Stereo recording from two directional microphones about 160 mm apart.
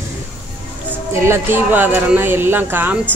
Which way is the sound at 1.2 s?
15° right (ahead or behind).